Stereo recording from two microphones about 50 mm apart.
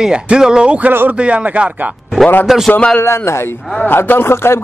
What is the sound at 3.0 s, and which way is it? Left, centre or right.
Speech, left.